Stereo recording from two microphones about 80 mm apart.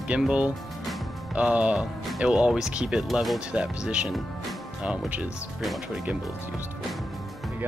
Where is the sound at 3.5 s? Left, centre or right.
Centre.